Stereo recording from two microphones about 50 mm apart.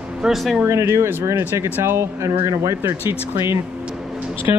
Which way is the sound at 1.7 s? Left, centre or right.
Right.